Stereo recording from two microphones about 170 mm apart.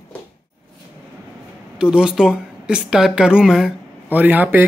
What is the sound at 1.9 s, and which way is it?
A man's voice, 5° right (ahead or behind).